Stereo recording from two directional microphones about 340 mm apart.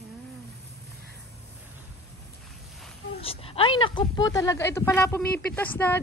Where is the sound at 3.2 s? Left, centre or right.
Centre.